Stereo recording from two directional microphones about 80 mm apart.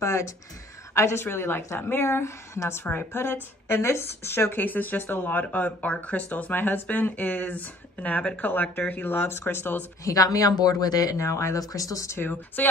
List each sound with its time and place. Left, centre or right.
0.0 s a woman's voice: left
10.0 s speech: left
12.2 s speech: left